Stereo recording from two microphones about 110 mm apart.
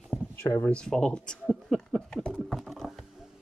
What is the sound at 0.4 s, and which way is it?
Speech, 25° left (ahead or behind).